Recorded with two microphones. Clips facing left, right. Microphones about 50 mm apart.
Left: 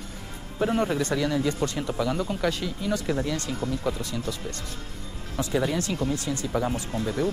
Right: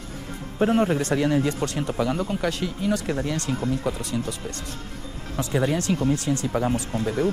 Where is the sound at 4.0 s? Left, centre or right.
Right.